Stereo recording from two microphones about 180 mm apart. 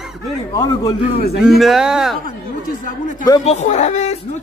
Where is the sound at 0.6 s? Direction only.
20° left (ahead or behind).